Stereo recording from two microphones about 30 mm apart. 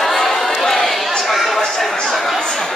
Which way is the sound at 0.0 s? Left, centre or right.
Centre.